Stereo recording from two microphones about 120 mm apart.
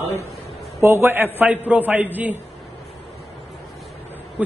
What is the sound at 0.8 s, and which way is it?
A man's voice, 20° right (ahead or behind).